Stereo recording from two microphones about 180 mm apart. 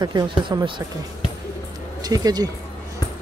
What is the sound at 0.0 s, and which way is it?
Speech, 25° right (ahead or behind).